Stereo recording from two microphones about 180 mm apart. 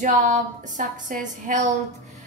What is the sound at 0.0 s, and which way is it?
A woman's voice, 45° right (ahead or behind).